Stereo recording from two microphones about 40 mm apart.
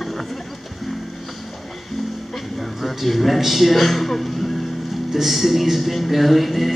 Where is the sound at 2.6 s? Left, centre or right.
Centre.